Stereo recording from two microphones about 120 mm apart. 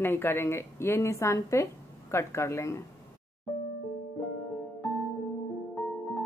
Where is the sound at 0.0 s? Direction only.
20° left (ahead or behind).